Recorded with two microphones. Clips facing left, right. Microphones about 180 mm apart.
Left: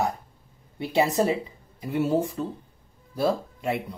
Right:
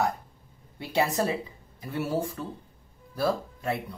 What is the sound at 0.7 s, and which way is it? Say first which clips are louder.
Speech: left 4 dB; 20° left (ahead or behind).